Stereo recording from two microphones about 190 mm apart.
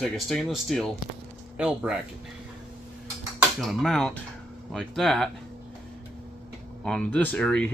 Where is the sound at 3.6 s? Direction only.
Centre (ahead or behind).